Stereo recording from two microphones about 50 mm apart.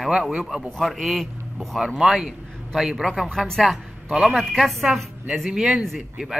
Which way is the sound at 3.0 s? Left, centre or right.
Centre.